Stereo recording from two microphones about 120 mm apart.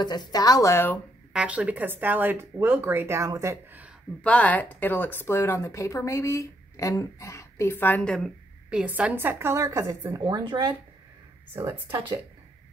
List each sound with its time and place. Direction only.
0.0 s speech: 35° left (ahead or behind)
1.3 s speech: 10° right (ahead or behind); by 3.5 s 25° right (ahead or behind)
4.2 s speech: 10° left (ahead or behind)
8.6 s a woman's voice: 10° right (ahead or behind); by 10.7 s 40° right (ahead or behind)
11.5 s speech: 20° right (ahead or behind)